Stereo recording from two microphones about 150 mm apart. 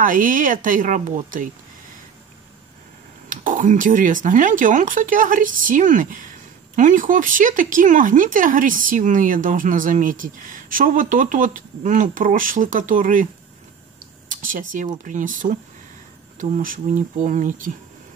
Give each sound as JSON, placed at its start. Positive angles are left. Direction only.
{"t": 0.0, "sound": "speech", "side_deg": -65}
{"t": 3.3, "sound": "speech", "side_deg": -60}
{"t": 14.3, "sound": "speech", "side_deg": -60}